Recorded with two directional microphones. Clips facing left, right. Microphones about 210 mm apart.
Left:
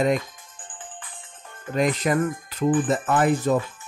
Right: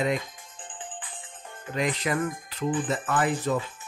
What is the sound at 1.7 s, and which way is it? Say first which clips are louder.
Jingle bell: left 5 dB; 45° left (ahead or behind).